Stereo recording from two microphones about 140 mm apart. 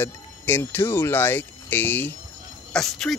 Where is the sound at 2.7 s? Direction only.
5° left (ahead or behind).